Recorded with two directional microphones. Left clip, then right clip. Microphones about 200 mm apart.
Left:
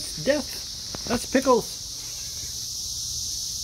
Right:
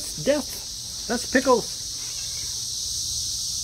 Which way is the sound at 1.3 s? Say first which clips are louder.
Right 1 dB; 10° left (ahead or behind).